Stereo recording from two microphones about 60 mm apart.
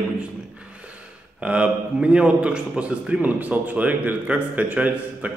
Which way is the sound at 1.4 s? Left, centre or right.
Centre.